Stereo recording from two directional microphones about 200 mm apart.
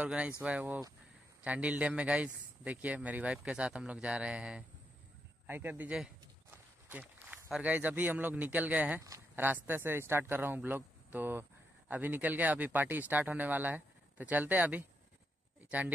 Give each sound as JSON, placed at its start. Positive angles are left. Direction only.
{"t": 0.0, "sound": "speech", "side_deg": -5}